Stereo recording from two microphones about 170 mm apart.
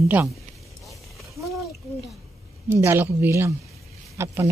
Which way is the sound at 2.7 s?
15° right (ahead or behind).